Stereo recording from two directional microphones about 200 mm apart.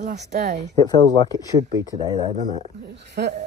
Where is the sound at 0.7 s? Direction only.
20° left (ahead or behind).